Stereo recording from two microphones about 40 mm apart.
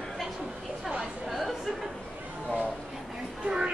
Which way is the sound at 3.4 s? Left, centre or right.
Right.